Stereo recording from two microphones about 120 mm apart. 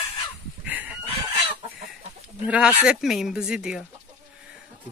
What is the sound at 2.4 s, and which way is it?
Speech, 10° right (ahead or behind).